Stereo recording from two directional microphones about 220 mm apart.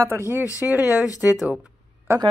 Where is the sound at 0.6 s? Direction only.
5° right (ahead or behind).